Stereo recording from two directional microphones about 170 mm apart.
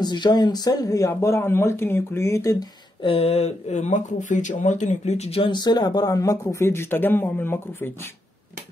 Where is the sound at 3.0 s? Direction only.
35° left (ahead or behind); by 8.1 s 15° left (ahead or behind).